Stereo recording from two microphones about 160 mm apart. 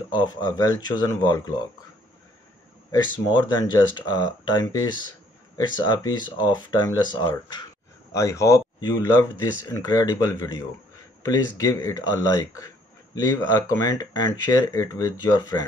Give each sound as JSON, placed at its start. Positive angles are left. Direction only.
{"t": 0.1, "sound": "speech", "side_deg": 25}
{"t": 3.6, "sound": "speech", "side_deg": 25}